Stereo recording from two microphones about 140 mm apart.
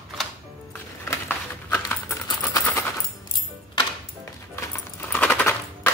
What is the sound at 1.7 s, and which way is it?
Keys jangling, 15° left (ahead or behind).